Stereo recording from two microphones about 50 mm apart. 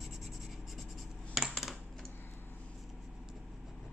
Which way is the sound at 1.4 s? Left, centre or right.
Centre.